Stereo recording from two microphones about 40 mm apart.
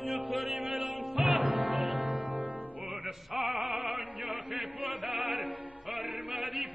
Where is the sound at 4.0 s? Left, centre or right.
Right.